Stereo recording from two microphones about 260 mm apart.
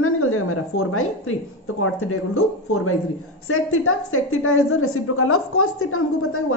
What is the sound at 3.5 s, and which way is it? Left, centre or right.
A woman's voice, left.